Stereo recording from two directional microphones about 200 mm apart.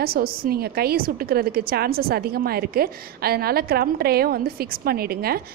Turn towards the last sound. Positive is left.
turn(degrees=-50)  # may be behind; listen again after turning